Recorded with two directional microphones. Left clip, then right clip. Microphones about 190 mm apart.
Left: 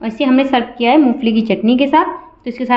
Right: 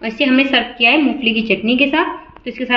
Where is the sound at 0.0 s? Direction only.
60° left (ahead or behind).